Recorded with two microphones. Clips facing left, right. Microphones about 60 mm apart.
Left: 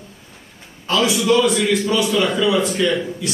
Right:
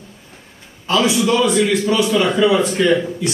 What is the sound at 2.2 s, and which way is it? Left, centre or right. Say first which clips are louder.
Speech: right 3 dB; right.